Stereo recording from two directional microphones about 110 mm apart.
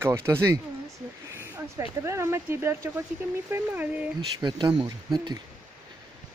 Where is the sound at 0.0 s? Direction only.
25° right (ahead or behind).